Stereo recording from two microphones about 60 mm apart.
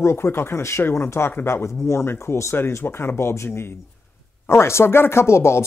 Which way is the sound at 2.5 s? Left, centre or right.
Left.